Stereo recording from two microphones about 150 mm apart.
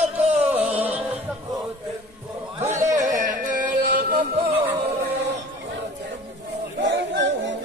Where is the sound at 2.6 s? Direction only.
55° right (ahead or behind).